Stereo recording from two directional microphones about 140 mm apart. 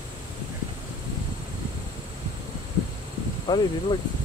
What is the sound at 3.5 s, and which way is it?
Speech, 35° left (ahead or behind).